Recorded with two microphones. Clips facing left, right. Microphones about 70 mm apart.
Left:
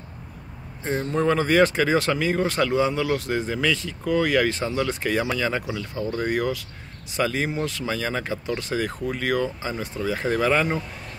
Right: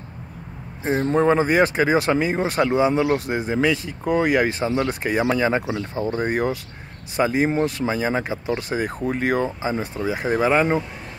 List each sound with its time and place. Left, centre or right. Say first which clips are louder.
1.0 s speech: right 4 dB; right